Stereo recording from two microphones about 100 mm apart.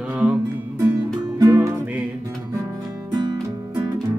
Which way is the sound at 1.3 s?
35° right (ahead or behind).